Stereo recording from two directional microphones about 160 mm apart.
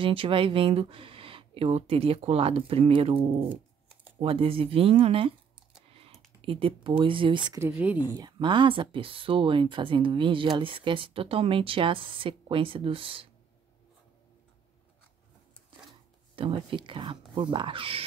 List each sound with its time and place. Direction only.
0.0 s speech: 35° right (ahead or behind)
6.4 s speech: 35° right (ahead or behind)
7.5 s speech: 15° right (ahead or behind)
8.1 s speech: 25° right (ahead or behind)
16.3 s speech: 30° right (ahead or behind)